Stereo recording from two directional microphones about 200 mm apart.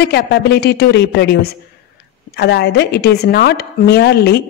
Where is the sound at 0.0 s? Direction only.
55° left (ahead or behind).